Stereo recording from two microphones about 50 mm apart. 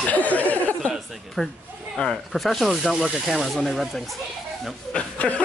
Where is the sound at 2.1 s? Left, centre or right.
Centre.